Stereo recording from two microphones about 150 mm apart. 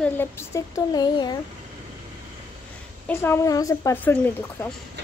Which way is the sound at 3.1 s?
15° left (ahead or behind).